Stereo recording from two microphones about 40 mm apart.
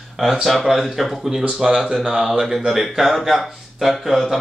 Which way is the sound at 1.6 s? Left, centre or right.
Centre.